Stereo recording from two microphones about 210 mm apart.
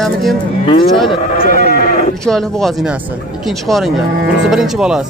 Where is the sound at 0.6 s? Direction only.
25° left (ahead or behind).